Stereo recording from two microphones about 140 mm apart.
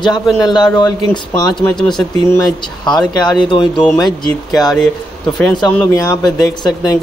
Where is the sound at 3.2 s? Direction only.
35° left (ahead or behind).